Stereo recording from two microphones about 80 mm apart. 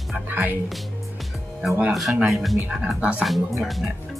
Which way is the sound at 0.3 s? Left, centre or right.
Right.